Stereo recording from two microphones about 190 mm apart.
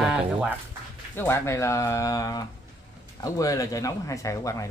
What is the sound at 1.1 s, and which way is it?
Speech, 10° left (ahead or behind).